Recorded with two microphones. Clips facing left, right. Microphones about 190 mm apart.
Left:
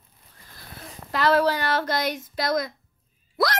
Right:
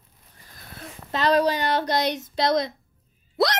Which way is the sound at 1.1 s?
20° right (ahead or behind).